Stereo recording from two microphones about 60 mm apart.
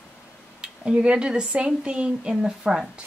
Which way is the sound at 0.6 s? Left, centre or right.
Centre.